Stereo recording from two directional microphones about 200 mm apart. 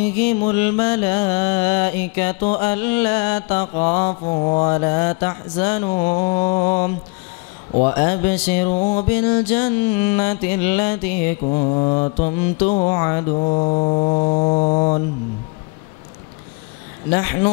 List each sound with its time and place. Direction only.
0.0 s music: 10° left (ahead or behind)
4.1 s mantra: 35° left (ahead or behind)
4.6 s music: 20° left (ahead or behind)
7.8 s music: 15° left (ahead or behind)
8.7 s mantra: 40° left (ahead or behind)
9.0 s music: 10° left (ahead or behind)
11.4 s mantra: 30° left (ahead or behind)
12.6 s mantra: 40° left (ahead or behind)
12.9 s mantra: 20° left (ahead or behind); by 15.0 s 35° left (ahead or behind)
17.1 s music: 15° left (ahead or behind)